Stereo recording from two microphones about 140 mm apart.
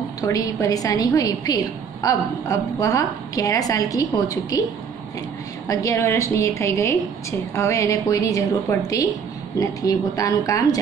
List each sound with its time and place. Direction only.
0.2 s a woman's voice: 25° left (ahead or behind)
5.7 s a woman's voice: 25° left (ahead or behind)